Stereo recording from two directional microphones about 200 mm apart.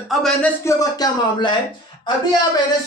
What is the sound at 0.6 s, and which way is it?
Speech, 15° left (ahead or behind).